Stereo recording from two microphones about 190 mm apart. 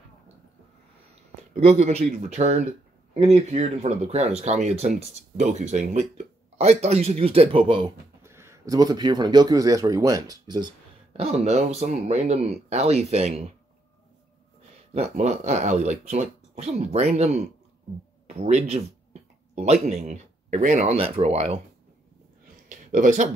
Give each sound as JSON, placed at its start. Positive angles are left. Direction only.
{"t": 1.6, "sound": "speech", "side_deg": -35}
{"t": 8.2, "sound": "speech", "side_deg": -15}
{"t": 11.1, "sound": "speech", "side_deg": -35}
{"t": 15.0, "sound": "speech", "side_deg": -35}
{"t": 22.7, "sound": "a sound", "side_deg": -40}